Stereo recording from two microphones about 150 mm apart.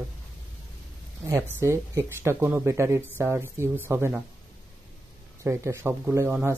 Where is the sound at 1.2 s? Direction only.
20° right (ahead or behind).